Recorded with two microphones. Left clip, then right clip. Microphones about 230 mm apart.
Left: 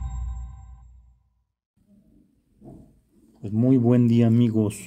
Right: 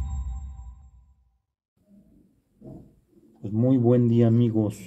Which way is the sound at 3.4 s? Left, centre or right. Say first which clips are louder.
Left 2 dB; left.